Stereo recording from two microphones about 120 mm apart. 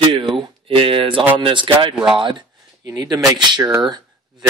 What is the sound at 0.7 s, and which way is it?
Speech, 50° right (ahead or behind).